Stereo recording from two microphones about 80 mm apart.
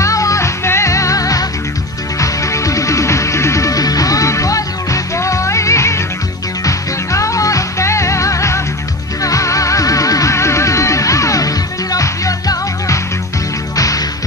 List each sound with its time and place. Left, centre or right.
0.0 s music: left